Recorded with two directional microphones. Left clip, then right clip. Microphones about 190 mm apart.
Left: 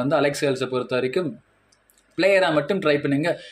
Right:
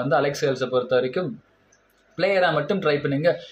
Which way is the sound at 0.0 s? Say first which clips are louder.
Even; 35° left (ahead or behind).